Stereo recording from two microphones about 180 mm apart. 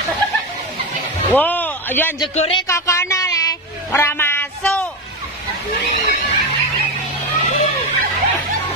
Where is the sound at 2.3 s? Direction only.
30° left (ahead or behind).